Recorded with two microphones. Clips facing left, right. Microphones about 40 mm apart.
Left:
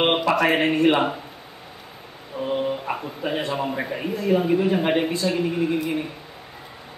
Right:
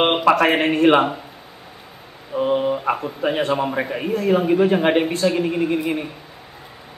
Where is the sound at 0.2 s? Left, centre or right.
Right.